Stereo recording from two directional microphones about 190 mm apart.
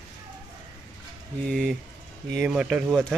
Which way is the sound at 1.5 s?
Centre (ahead or behind).